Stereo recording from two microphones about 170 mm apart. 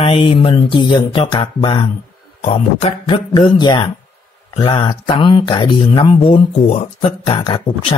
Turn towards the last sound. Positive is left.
turn(degrees=30)  # may be behind; listen again after turning